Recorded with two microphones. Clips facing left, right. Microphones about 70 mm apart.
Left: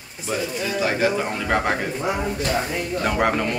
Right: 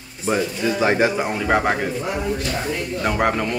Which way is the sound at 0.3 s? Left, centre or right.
Right.